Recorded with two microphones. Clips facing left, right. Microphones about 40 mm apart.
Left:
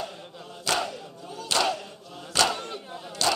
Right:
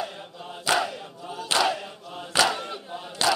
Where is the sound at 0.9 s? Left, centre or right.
Right.